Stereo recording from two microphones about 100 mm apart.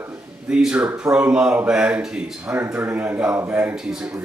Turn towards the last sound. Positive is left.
turn(degrees=-20)  # may be behind; listen again after turning